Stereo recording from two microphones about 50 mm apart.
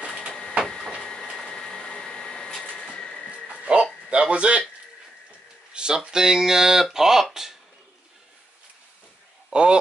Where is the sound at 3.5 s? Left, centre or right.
Right.